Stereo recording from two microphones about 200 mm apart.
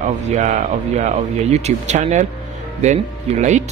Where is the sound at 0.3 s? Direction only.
40° right (ahead or behind).